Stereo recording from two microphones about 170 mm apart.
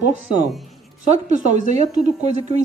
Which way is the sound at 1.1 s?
45° right (ahead or behind).